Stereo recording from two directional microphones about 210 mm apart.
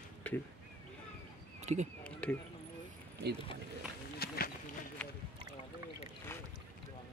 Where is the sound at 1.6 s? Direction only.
35° right (ahead or behind).